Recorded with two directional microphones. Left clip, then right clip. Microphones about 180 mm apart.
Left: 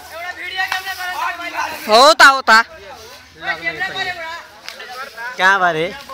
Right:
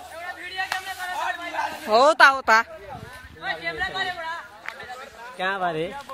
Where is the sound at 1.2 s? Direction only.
30° right (ahead or behind).